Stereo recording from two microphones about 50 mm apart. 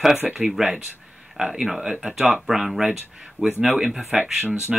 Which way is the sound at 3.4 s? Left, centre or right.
Right.